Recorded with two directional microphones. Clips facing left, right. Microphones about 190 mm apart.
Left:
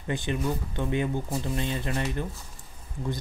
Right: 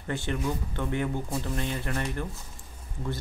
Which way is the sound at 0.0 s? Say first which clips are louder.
Left 1 dB; 15° left (ahead or behind).